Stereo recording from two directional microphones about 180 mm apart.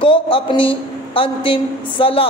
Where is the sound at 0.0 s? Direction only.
30° left (ahead or behind).